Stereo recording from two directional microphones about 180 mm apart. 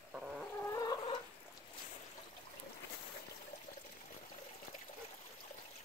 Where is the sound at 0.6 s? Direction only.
20° left (ahead or behind).